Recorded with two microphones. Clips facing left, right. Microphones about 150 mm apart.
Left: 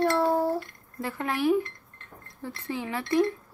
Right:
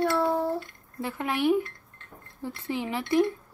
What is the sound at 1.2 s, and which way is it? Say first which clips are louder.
A child's voice: even; 20° right (ahead or behind).